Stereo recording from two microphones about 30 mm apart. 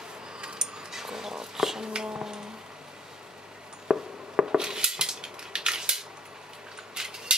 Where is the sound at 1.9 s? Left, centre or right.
Right.